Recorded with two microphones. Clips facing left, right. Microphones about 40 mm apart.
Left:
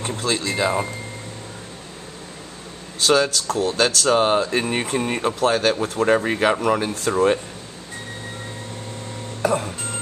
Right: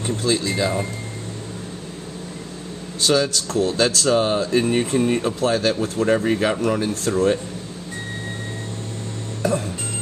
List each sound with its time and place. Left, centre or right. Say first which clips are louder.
0.2 s speech: right 1 dB; centre
0.6 s speech: left 1 dB; left
3.4 s speech: right 1 dB; centre
9.4 s music: left 1 dB; left